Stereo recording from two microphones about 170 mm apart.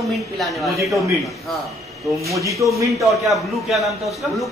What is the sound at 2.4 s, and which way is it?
Speech, 20° right (ahead or behind).